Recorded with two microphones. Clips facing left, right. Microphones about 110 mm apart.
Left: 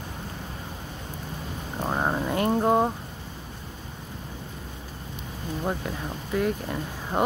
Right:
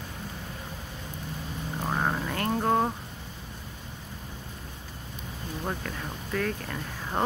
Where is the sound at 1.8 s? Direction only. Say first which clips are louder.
Left 3 dB; 20° left (ahead or behind).